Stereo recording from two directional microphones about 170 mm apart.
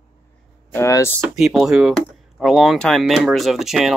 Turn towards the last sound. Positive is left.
turn(degrees=0)  # may be behind; listen again after turning